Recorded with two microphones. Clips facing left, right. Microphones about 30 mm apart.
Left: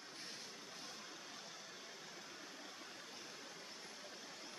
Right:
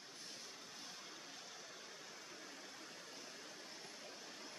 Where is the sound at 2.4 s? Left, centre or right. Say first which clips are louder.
Left 1 dB; centre.